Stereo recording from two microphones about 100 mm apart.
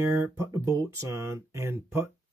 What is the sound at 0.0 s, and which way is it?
Speech, 30° right (ahead or behind).